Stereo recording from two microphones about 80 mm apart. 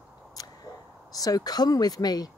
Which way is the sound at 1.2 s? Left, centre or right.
Left.